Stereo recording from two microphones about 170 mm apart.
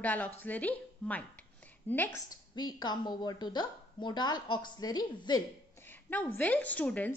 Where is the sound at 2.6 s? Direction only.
25° left (ahead or behind).